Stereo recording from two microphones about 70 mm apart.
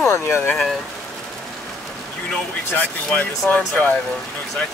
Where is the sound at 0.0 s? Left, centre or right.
Left.